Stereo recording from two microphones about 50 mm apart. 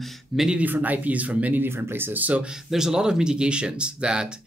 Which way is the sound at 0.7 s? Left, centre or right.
Right.